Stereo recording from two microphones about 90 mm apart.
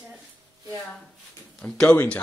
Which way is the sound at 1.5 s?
10° left (ahead or behind).